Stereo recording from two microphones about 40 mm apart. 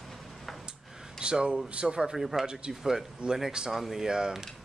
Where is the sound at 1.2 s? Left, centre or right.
Right.